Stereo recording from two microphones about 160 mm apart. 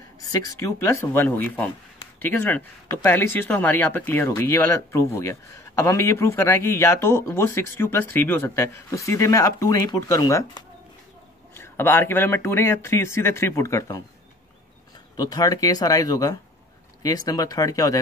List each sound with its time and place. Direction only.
0.3 s a man's voice: 20° left (ahead or behind)
15.1 s speech: 25° left (ahead or behind)